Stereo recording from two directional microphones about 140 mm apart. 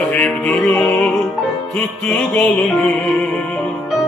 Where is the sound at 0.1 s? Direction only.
10° left (ahead or behind).